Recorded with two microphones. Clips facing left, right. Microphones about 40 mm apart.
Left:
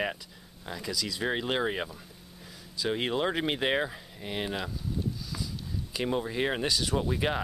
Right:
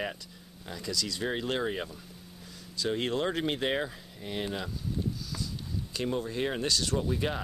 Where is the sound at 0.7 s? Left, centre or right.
Centre.